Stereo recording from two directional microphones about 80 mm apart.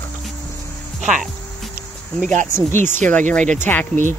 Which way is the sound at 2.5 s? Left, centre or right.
Left.